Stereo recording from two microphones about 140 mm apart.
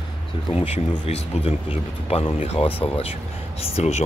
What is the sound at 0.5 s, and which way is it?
Speech, 45° left (ahead or behind).